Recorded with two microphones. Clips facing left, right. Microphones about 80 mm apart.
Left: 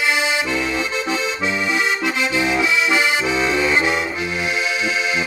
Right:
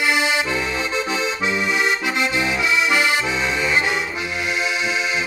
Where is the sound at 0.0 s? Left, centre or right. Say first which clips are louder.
Even; centre.